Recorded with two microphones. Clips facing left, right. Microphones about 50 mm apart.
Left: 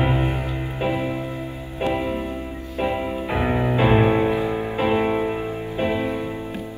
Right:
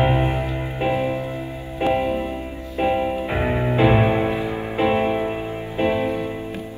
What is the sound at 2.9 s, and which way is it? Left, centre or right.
Music, right.